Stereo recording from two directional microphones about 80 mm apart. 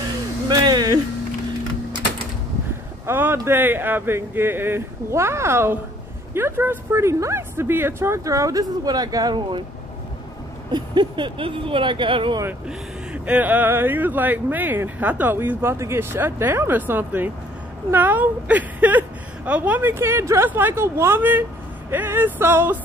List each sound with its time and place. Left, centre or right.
0.5 s a sound: right
3.1 s speech: right
8.2 s speech: right
10.7 s speech: right
12.6 s speech: centre